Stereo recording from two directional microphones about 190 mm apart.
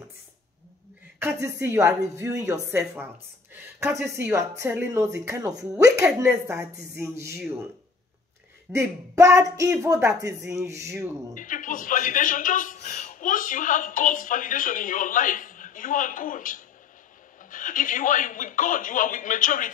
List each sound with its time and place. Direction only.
1.2 s a woman's voice: 15° right (ahead or behind)
8.7 s a woman's voice: 15° right (ahead or behind)
11.3 s a man's voice: 45° left (ahead or behind)